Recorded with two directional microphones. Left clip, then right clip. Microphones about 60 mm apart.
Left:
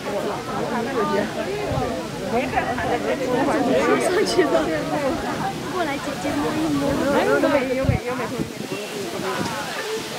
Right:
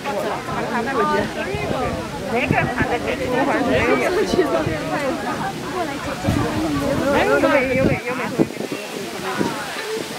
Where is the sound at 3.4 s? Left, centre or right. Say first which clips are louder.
Even; right.